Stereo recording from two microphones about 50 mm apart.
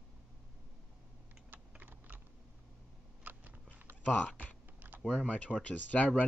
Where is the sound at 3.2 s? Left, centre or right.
Right.